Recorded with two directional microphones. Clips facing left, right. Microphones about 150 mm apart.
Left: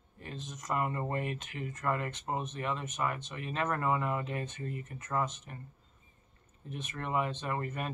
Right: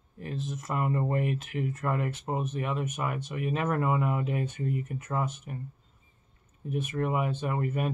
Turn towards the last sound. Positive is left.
turn(degrees=-5)  # may be behind; listen again after turning